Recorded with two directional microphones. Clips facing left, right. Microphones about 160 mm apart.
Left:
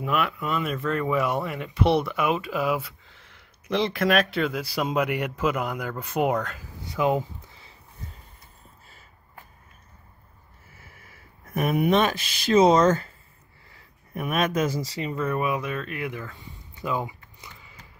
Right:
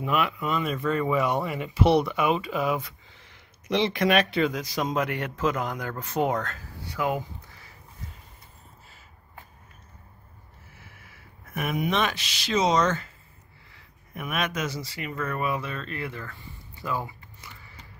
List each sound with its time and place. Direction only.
0.0 s speech: centre (ahead or behind); by 7.7 s 25° left (ahead or behind)
11.5 s speech: 35° left (ahead or behind)
14.9 s speech: 30° left (ahead or behind)
15.1 s speech: 15° left (ahead or behind)